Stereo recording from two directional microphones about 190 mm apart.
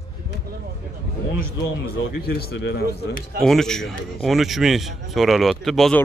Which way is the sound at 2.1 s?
60° left (ahead or behind).